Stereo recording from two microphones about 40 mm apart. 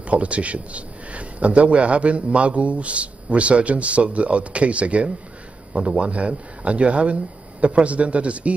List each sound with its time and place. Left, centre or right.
0.0 s a man's voice: right